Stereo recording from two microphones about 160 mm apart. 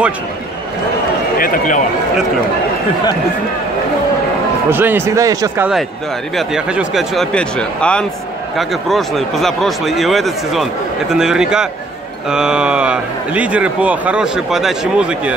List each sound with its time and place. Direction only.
1.4 s speech: 60° left (ahead or behind)
4.6 s speech: 15° right (ahead or behind)
6.3 s speech: 5° right (ahead or behind)